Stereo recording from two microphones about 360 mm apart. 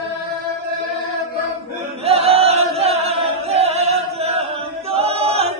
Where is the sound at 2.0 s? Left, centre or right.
Centre.